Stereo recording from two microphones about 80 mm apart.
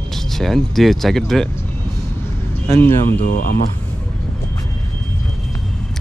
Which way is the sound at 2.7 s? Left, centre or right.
Left.